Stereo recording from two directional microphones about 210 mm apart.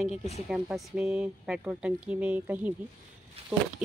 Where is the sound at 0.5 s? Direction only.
5° right (ahead or behind).